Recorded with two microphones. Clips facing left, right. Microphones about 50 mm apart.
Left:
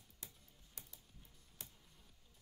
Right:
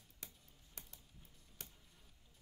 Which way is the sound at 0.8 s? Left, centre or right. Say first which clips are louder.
Right 2 dB; right.